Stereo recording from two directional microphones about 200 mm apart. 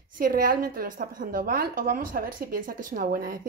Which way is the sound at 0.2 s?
45° right (ahead or behind).